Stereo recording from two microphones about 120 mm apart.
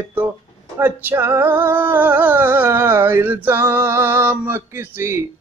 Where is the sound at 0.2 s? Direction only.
15° right (ahead or behind).